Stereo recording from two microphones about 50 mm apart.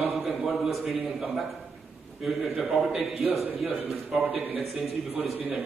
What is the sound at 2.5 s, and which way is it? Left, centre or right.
Speech, centre.